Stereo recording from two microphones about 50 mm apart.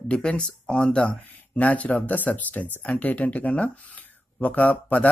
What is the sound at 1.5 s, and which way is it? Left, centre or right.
Speech, left.